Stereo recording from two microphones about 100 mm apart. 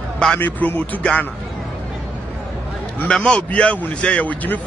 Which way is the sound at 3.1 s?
10° left (ahead or behind).